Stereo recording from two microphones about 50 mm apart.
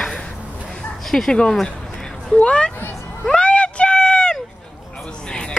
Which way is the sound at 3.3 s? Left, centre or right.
Left.